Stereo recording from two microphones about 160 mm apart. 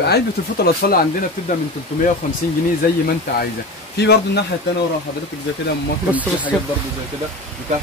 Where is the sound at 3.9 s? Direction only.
90° left.